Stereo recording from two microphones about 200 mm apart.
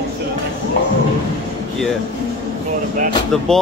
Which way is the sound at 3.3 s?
5° left (ahead or behind).